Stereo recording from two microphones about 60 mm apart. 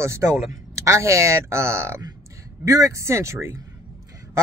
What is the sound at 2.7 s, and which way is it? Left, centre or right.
Speech, right.